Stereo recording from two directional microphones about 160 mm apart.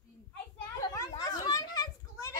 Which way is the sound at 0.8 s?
20° left (ahead or behind).